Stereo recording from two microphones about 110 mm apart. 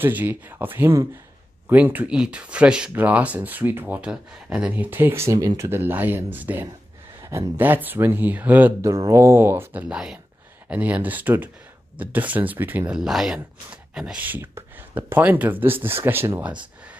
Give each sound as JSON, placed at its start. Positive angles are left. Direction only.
{"t": 0.0, "sound": "speech", "side_deg": -15}
{"t": 8.8, "sound": "speech", "side_deg": -30}
{"t": 12.9, "sound": "speech", "side_deg": -5}